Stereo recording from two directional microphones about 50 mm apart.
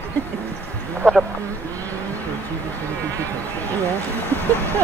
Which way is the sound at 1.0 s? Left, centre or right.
Left.